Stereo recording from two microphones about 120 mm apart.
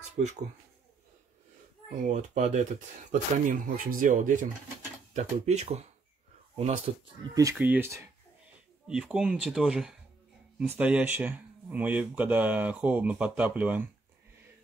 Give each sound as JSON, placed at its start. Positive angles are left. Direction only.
{"t": 0.2, "sound": "speech", "side_deg": -75}
{"t": 1.9, "sound": "speech", "side_deg": -75}
{"t": 3.1, "sound": "speech", "side_deg": -90}
{"t": 5.1, "sound": "speech", "side_deg": -70}
{"t": 7.5, "sound": "speech", "side_deg": -15}